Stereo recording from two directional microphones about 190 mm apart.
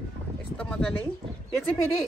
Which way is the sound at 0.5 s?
5° left (ahead or behind).